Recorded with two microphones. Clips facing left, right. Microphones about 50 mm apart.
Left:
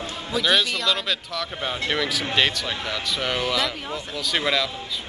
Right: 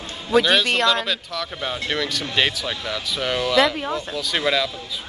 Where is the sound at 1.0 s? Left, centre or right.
Centre.